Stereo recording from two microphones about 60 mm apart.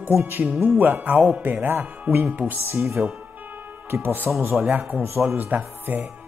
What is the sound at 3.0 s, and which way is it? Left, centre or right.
Speech, right.